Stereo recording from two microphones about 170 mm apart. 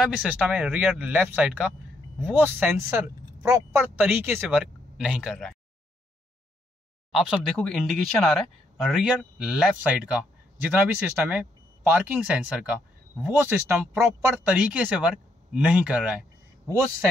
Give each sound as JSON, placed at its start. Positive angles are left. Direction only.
{"t": 0.0, "sound": "speech", "side_deg": -5}
{"t": 7.1, "sound": "speech", "side_deg": 0}